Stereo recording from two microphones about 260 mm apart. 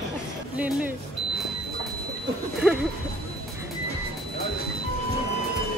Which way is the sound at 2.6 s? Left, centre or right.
Centre.